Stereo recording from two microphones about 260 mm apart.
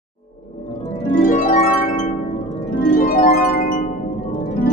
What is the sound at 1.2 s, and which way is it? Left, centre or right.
Harp, left.